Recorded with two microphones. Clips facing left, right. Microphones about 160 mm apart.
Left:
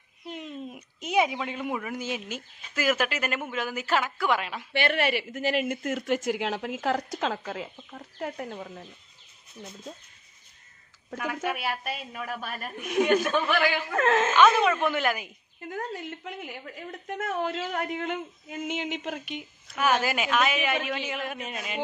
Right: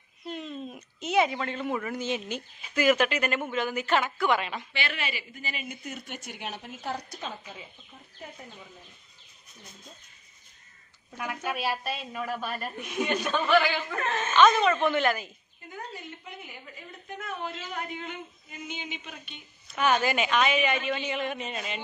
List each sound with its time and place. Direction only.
0.2 s a woman's voice: 15° left (ahead or behind)
4.7 s speech: 60° left (ahead or behind); by 5.8 s 80° left
5.9 s a woman's voice: 90° left; by 8.8 s 70° left (ahead or behind)
11.1 s a woman's voice: 90° left
12.9 s a man's voice: 65° left (ahead or behind)
13.3 s speech: 10° left (ahead or behind)
13.9 s a woman's voice: 90° left
14.3 s speech: 10° left (ahead or behind)
16.0 s speech: 75° left (ahead or behind)
19.7 s a woman's voice: 5° left (ahead or behind)